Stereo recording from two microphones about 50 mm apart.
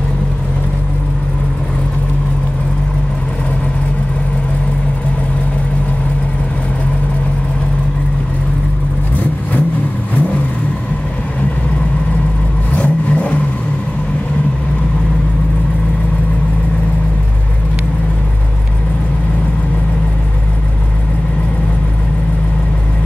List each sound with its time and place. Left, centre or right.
12.7 s vehicle: left